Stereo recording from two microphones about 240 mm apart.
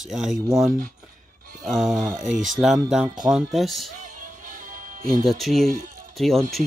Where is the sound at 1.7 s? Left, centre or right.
Centre.